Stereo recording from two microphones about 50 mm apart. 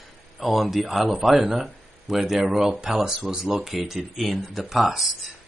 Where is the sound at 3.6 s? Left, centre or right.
Centre.